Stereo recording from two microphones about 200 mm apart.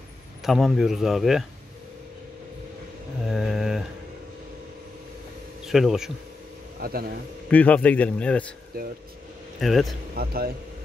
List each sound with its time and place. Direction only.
0.4 s speech: centre (ahead or behind)
3.3 s a sound: centre (ahead or behind)
5.7 s speech: centre (ahead or behind)
6.8 s a man's voice: 50° right (ahead or behind)
7.4 s a man's voice: 5° left (ahead or behind)
9.6 s speech: centre (ahead or behind)
10.1 s speech: 50° right (ahead or behind)